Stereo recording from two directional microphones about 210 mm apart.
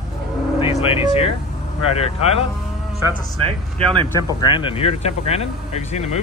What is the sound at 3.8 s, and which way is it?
Speech, 25° right (ahead or behind).